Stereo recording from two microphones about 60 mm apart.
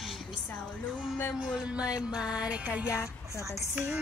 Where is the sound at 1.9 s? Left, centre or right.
Centre.